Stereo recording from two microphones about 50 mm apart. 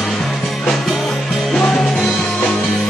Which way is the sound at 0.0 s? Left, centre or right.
Centre.